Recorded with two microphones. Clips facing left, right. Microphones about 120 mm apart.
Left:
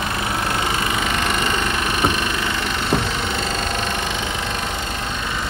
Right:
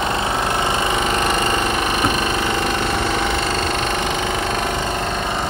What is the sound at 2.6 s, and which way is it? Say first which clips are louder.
Vehicle: right 2 dB; 50° right (ahead or behind).